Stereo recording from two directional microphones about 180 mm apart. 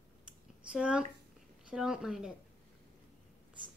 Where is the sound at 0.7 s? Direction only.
5° right (ahead or behind).